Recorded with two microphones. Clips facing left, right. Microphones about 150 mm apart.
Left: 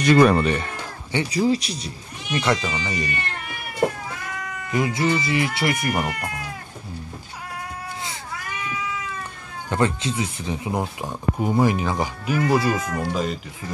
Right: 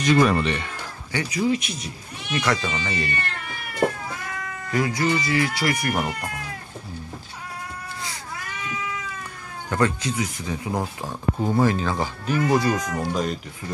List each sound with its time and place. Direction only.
0.0 s speech: 60° left (ahead or behind)
0.3 s speech: 45° left (ahead or behind)
1.1 s speech: 35° left (ahead or behind)
2.4 s speech: 20° left (ahead or behind)
4.6 s speech: 20° left (ahead or behind)
5.9 s speech: 5° left (ahead or behind)
9.7 s speech: 20° left (ahead or behind); by 13.4 s centre (ahead or behind)